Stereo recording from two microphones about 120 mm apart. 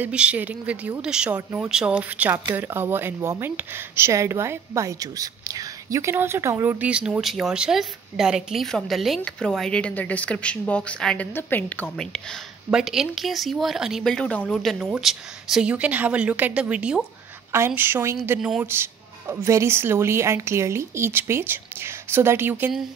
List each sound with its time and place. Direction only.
0.0 s speech: 10° right (ahead or behind)
6.9 s a woman's voice: 10° right (ahead or behind); by 11.9 s 15° left (ahead or behind)
12.0 s speech: 5° left (ahead or behind)
18.7 s speech: 20° right (ahead or behind)